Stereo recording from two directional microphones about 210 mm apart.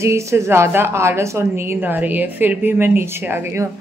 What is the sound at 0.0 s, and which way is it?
A woman's voice, 15° right (ahead or behind).